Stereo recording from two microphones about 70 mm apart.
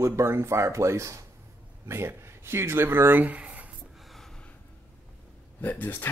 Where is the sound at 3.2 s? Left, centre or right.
Right.